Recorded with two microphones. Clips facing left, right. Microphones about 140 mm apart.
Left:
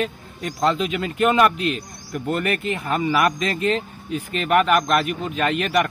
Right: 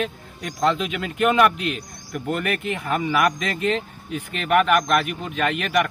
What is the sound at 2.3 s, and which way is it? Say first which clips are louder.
Speech: left 2 dB; centre (ahead or behind).